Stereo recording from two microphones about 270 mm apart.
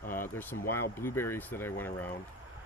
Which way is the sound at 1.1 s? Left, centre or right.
Centre.